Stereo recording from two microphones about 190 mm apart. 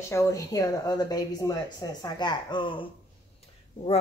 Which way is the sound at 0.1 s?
15° left (ahead or behind).